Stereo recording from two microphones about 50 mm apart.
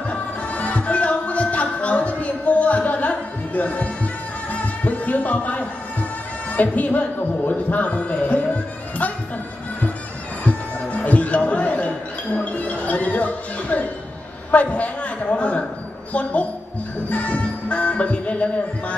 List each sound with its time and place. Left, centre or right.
0.1 s music: left
6.5 s speech: left
10.4 s music: left
14.5 s a sound: left
16.1 s a woman's voice: left
17.1 s music: left